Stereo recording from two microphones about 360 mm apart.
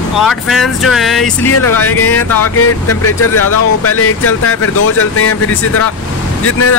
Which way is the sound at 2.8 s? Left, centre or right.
Left.